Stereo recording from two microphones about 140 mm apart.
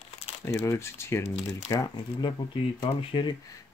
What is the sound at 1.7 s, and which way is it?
Speech, 30° left (ahead or behind).